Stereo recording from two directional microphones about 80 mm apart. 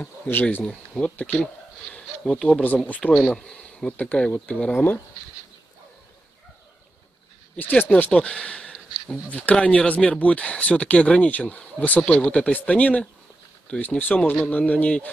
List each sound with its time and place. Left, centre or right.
0.0 s speech: left; by 3.5 s centre
3.5 s speech: centre
7.5 s speech: left
7.9 s speech: centre